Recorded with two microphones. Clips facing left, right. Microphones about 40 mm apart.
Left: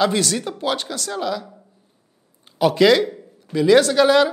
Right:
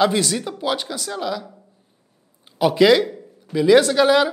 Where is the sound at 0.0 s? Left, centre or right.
Right.